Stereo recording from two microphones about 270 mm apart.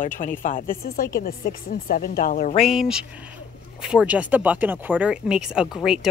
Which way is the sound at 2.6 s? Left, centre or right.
Centre.